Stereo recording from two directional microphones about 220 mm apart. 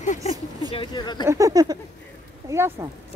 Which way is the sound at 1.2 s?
15° right (ahead or behind).